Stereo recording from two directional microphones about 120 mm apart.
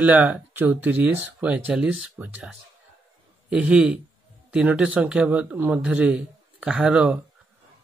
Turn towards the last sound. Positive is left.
turn(degrees=-5)  # may be behind; listen again after turning